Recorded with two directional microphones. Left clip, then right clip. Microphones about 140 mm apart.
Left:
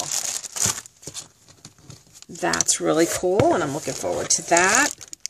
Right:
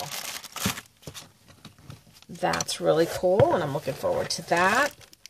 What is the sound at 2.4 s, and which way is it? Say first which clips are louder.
Speech: left 3 dB; 30° left (ahead or behind).